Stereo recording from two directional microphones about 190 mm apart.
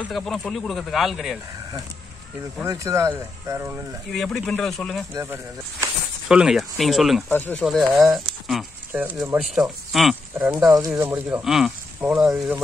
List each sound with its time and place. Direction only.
0.0 s speech: centre (ahead or behind)
2.6 s speech: 15° right (ahead or behind)
4.1 s speech: centre (ahead or behind)
5.1 s speech: 15° right (ahead or behind)
6.2 s speech: 5° right (ahead or behind)
7.2 s speech: 10° left (ahead or behind)
7.6 s speech: centre (ahead or behind)
10.7 s speech: 15° right (ahead or behind)